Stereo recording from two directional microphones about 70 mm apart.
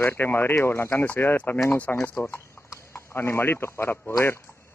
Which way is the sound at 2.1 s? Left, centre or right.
Left.